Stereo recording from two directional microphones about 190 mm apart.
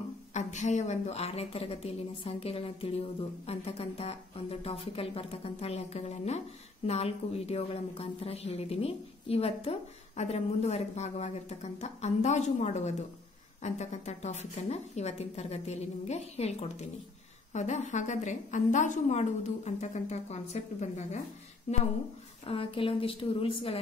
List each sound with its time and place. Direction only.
0.3 s a woman's voice: 40° left (ahead or behind)
22.5 s a woman's voice: 30° left (ahead or behind)